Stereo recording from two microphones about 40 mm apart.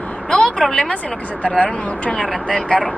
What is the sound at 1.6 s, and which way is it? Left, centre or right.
Speech, left.